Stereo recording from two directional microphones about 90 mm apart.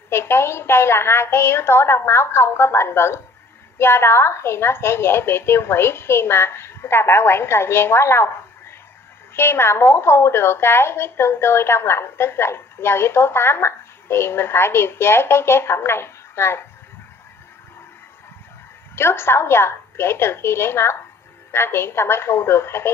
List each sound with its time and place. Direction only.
0.1 s a woman's voice: 25° left (ahead or behind)
18.9 s a woman's voice: 25° left (ahead or behind)